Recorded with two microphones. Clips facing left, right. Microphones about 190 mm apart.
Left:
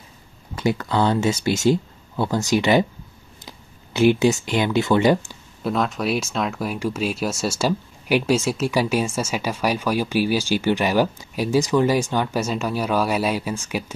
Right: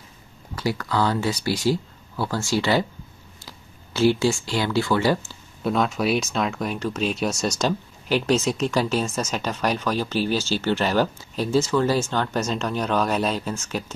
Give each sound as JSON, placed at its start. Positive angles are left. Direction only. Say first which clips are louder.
{"t": 0.6, "sound": "speech", "louder": "left 3 dB", "side_deg": 20}
{"t": 5.6, "sound": "speech", "louder": "even", "side_deg": 0}